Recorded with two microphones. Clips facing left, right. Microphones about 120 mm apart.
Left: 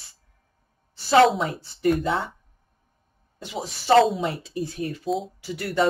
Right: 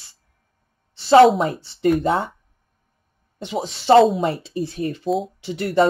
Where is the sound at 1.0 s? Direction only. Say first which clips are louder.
Right 6 dB; 30° right (ahead or behind).